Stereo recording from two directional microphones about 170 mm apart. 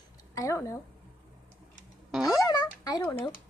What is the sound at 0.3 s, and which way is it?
Speech, 20° left (ahead or behind).